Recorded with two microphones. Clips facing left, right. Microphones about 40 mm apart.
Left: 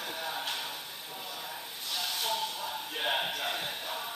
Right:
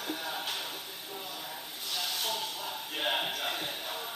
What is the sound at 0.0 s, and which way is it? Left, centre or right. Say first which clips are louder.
Music: even; centre.